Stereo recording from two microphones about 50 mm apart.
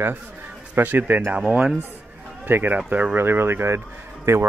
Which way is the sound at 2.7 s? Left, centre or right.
Right.